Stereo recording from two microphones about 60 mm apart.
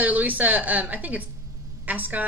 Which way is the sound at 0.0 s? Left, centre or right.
Right.